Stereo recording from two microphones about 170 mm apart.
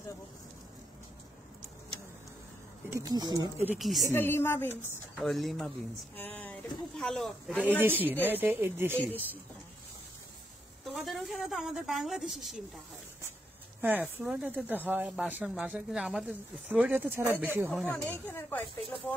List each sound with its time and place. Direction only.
3.0 s speech: 25° right (ahead or behind)
3.5 s speech: 10° right (ahead or behind)
3.8 s speech: centre (ahead or behind)
4.1 s a woman's voice: 15° left (ahead or behind)
5.2 s speech: centre (ahead or behind)
7.8 s speech: 10° right (ahead or behind)
10.8 s a woman's voice: centre (ahead or behind)
17.6 s a woman's voice: 5° left (ahead or behind)